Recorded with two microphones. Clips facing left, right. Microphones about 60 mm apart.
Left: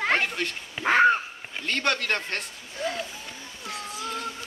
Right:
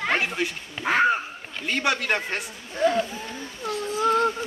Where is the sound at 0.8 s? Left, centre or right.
Centre.